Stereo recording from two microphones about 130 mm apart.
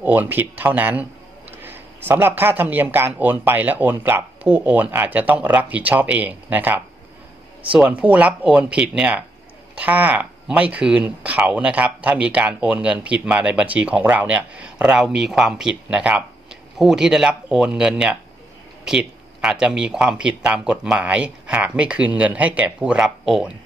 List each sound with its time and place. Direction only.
0.0 s speech: 15° right (ahead or behind)